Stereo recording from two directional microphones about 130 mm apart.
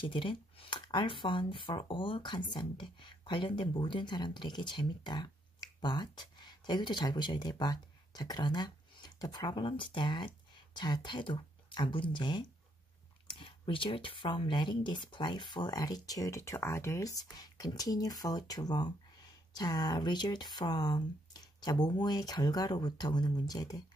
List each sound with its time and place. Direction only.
0.0 s speech: 40° left (ahead or behind)